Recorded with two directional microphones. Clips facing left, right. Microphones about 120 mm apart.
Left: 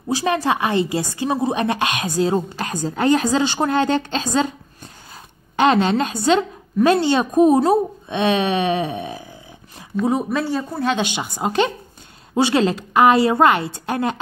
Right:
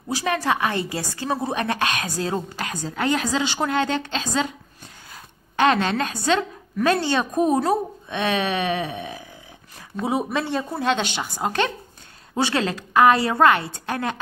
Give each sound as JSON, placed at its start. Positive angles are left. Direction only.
{"t": 0.1, "sound": "a woman's voice", "side_deg": 25}
{"t": 2.7, "sound": "a woman's voice", "side_deg": 35}
{"t": 5.1, "sound": "a woman's voice", "side_deg": 25}
{"t": 10.0, "sound": "speech", "side_deg": 0}
{"t": 11.1, "sound": "a woman's voice", "side_deg": 15}